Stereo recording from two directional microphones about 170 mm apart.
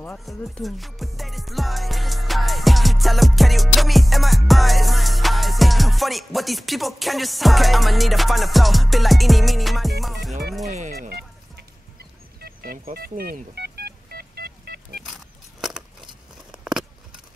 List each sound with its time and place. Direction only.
0.2 s music: centre (ahead or behind)
11.0 s music: 70° right (ahead or behind)
12.4 s telephone dialing: 60° right (ahead or behind)
15.6 s a sound: 5° right (ahead or behind)